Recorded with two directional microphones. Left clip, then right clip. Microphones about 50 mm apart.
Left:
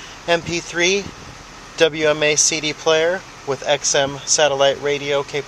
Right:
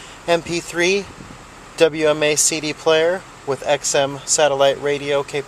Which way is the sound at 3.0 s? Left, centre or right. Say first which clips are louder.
Right 1 dB; right.